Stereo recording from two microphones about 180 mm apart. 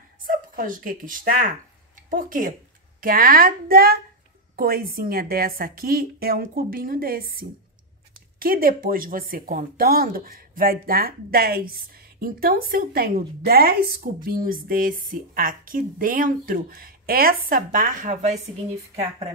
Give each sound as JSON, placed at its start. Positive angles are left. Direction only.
{"t": 0.2, "sound": "a woman's voice", "side_deg": -50}